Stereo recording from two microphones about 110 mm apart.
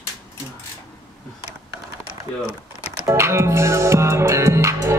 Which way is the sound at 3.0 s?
25° right (ahead or behind).